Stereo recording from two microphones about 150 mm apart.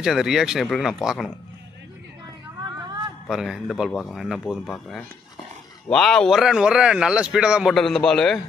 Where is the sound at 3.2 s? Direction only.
Centre (ahead or behind).